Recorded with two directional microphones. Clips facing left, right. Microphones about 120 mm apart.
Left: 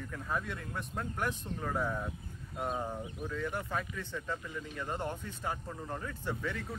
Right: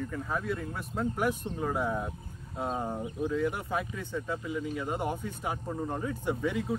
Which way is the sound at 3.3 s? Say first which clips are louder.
Right 4 dB; 10° right (ahead or behind).